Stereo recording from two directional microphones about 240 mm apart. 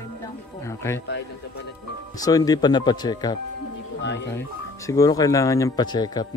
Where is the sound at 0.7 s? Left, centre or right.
Centre.